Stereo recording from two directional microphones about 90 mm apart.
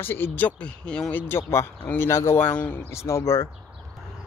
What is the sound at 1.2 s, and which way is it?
Speech, 30° left (ahead or behind).